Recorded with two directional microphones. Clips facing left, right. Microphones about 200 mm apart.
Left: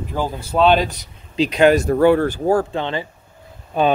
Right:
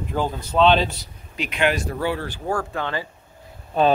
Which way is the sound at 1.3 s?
35° left (ahead or behind).